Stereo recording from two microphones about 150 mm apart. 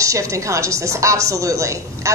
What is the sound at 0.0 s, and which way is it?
A woman's voice, 20° right (ahead or behind).